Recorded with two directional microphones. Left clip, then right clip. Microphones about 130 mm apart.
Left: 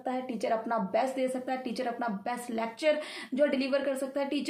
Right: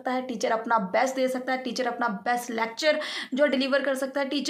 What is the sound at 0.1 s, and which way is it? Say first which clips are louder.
A woman's voice: right 4 dB; 20° left (ahead or behind).